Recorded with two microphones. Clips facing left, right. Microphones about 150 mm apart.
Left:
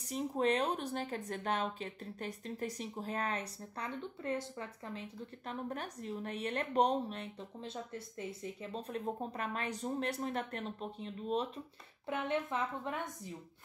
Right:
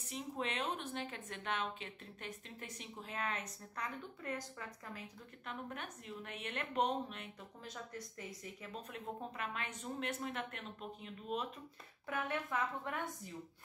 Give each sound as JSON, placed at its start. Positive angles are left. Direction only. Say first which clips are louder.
{"t": 0.1, "sound": "a woman's voice", "louder": "left 9 dB", "side_deg": 40}